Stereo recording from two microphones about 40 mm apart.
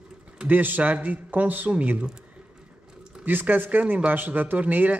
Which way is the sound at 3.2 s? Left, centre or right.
Right.